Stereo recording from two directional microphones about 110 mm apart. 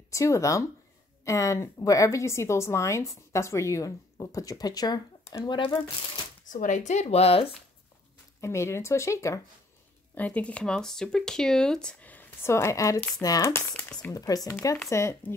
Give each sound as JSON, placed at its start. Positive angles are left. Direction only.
{"t": 0.1, "sound": "a woman's voice", "side_deg": 30}
{"t": 6.8, "sound": "speech", "side_deg": 90}
{"t": 8.4, "sound": "a woman's voice", "side_deg": 25}
{"t": 10.1, "sound": "a woman's voice", "side_deg": 10}
{"t": 14.1, "sound": "a woman's voice", "side_deg": 35}